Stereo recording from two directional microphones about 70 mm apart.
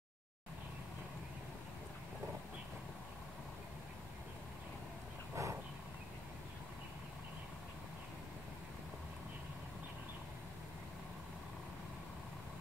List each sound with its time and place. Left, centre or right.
5.3 s vehicle: right